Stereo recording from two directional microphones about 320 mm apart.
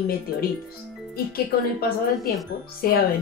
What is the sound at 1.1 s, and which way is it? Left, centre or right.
Speech, left.